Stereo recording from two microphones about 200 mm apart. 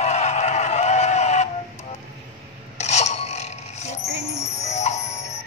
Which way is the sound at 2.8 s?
35° left (ahead or behind).